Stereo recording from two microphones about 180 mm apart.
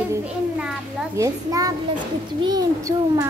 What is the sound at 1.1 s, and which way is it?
Speech, 20° right (ahead or behind).